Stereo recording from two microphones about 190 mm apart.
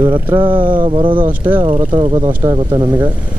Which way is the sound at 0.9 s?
30° right (ahead or behind).